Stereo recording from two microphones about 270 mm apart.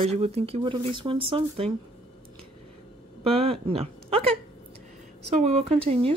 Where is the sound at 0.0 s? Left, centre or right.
Right.